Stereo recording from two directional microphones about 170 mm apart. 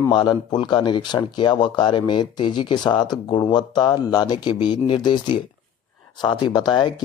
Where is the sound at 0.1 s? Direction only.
25° left (ahead or behind).